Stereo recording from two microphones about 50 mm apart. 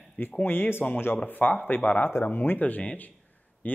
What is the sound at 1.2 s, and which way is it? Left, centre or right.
A man's voice, left.